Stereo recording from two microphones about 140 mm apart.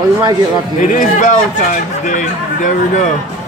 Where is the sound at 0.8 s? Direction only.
65° left (ahead or behind).